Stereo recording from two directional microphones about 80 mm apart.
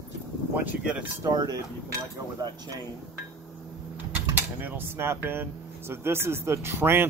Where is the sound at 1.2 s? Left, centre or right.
Right.